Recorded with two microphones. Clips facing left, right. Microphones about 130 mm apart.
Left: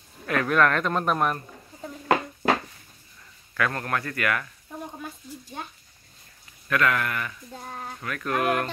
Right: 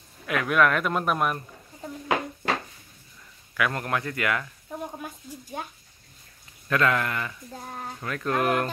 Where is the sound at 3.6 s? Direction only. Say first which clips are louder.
Even; 15° right (ahead or behind).